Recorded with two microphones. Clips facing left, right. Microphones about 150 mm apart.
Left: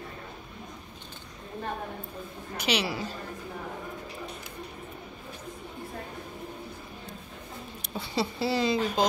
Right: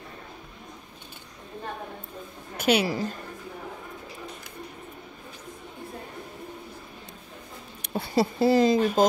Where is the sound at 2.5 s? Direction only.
50° right (ahead or behind).